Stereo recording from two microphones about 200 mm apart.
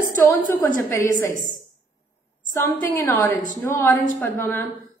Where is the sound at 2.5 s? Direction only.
15° left (ahead or behind).